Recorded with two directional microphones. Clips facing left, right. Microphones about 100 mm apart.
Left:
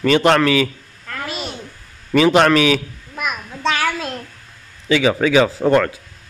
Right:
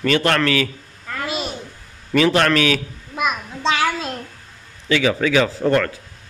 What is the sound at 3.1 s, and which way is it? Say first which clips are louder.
Child singing: right 3 dB; 20° right (ahead or behind).